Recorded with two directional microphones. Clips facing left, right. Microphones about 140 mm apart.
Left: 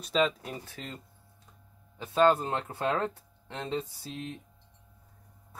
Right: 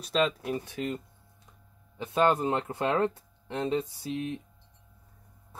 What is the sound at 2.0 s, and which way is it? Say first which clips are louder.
Speech: left 1 dB; 15° right (ahead or behind).